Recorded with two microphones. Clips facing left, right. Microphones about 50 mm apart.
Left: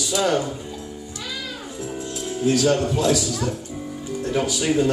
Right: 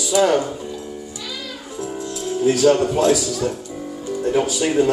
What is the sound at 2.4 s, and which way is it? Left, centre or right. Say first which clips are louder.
Speech: right 4 dB; right.